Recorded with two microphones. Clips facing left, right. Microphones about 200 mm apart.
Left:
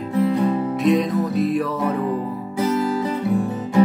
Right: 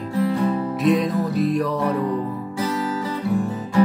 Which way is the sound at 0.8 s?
Centre (ahead or behind).